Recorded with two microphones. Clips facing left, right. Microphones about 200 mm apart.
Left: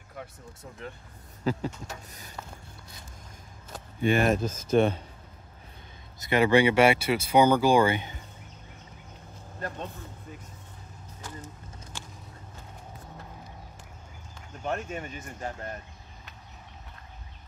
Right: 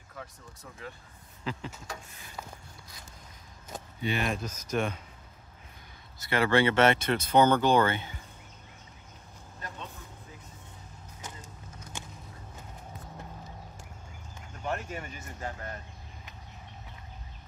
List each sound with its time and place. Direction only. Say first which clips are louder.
1.4 s a sound: left 8 dB; 40° left (ahead or behind)
4.0 s speech: left 8 dB; 50° left (ahead or behind)
4.4 s speech: left 8 dB; 30° left (ahead or behind)
6.1 s speech: left 4 dB; 20° left (ahead or behind)
11.1 s vehicle: left 4 dB; 20° right (ahead or behind)
14.6 s speech: left 2 dB; 25° left (ahead or behind)